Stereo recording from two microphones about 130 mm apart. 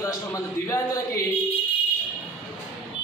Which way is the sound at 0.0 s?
25° left (ahead or behind).